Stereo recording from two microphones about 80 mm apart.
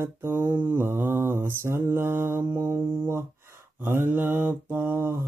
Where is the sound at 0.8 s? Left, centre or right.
Right.